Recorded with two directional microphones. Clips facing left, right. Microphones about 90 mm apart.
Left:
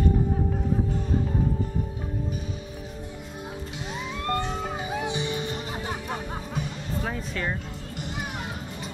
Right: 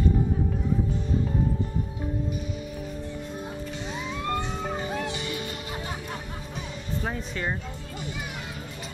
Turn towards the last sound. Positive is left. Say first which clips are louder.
# left 1 dB
turn(degrees=-5)  # may be behind; listen again after turning